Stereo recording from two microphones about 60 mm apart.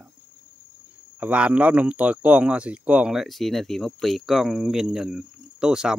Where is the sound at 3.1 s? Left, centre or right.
Centre.